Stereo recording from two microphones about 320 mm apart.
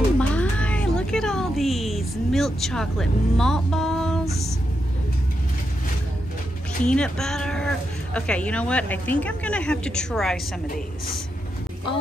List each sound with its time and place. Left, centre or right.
0.2 s cat: centre
6.8 s speech: centre